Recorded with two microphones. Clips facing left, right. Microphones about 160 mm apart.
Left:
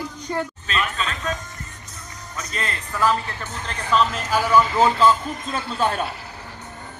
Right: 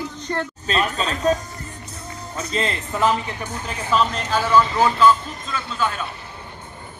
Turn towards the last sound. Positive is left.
turn(degrees=35)  # may be behind; listen again after turning